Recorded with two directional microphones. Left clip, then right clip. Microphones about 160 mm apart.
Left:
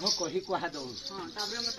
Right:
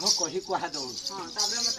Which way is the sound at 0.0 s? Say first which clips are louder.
Right 4 dB; 25° right (ahead or behind).